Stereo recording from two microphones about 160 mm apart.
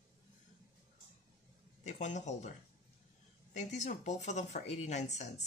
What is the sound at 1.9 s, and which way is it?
Speech, 50° left (ahead or behind).